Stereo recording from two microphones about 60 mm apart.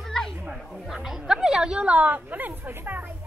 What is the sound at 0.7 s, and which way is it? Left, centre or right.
Chatter, centre.